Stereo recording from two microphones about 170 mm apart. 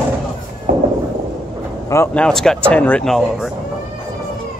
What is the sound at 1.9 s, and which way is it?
Speech, 15° left (ahead or behind).